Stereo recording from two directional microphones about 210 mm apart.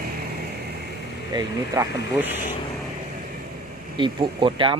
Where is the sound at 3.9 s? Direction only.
25° right (ahead or behind).